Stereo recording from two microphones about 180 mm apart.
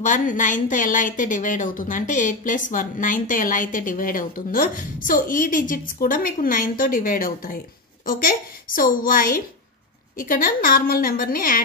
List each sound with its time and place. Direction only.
0.0 s a woman's voice: 45° left (ahead or behind)